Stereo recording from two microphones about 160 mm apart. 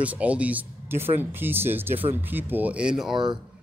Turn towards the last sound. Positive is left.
turn(degrees=-30)  # may be behind; listen again after turning